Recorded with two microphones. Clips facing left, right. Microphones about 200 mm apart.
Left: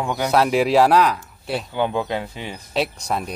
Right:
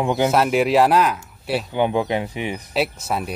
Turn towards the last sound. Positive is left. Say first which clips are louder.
# right 1 dB
turn(degrees=-5)  # may be behind; listen again after turning